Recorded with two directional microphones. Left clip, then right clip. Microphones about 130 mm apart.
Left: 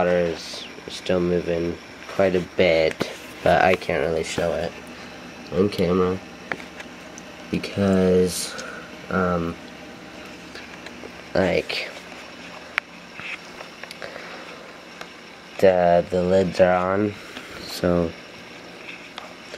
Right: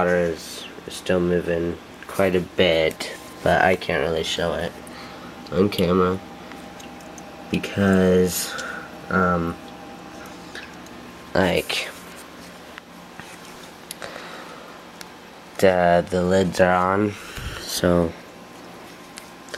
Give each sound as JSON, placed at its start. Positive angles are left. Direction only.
{"t": 0.0, "sound": "speech", "side_deg": 5}
{"t": 7.6, "sound": "speech", "side_deg": -5}
{"t": 11.3, "sound": "speech", "side_deg": -5}
{"t": 12.8, "sound": "a sound", "side_deg": -35}
{"t": 15.5, "sound": "speech", "side_deg": -15}